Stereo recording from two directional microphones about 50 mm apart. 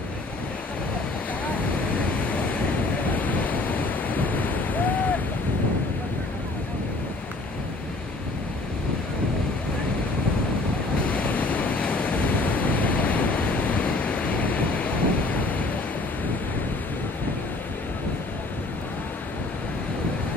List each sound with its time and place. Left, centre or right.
1.4 s waves: left
11.1 s waves: left